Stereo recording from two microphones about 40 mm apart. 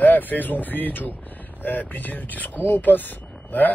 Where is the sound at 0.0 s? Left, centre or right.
Left.